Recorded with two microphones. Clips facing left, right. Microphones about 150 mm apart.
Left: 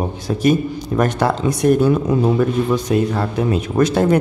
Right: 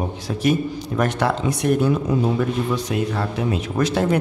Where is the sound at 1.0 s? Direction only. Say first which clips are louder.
Left 3 dB; 40° left (ahead or behind).